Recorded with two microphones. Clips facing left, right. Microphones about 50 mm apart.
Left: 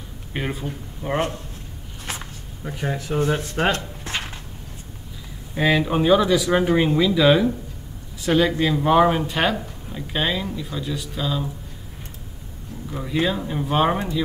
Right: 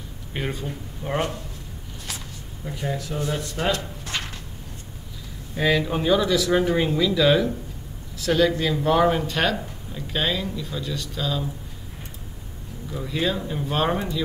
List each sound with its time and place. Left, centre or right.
0.3 s speech: centre
2.8 s speech: left
5.5 s speech: centre
13.0 s speech: centre